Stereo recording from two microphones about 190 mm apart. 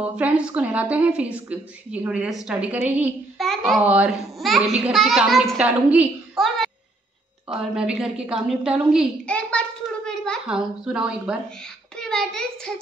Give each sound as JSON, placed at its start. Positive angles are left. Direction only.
{"t": 0.0, "sound": "speech", "side_deg": -5}